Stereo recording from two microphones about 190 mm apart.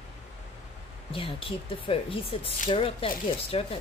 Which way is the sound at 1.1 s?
30° left (ahead or behind).